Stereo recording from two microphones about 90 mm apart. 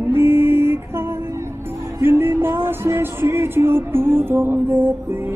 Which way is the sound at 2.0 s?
25° right (ahead or behind).